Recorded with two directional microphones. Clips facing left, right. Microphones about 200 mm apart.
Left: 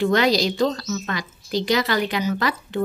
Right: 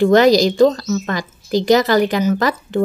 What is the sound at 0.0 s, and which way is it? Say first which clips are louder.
A woman's voice: right 8 dB; 45° right (ahead or behind).